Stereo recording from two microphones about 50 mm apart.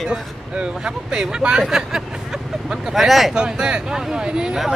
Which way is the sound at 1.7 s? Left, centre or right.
Centre.